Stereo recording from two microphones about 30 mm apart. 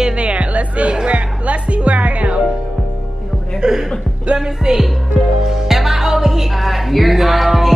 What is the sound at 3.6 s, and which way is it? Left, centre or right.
Speech, centre.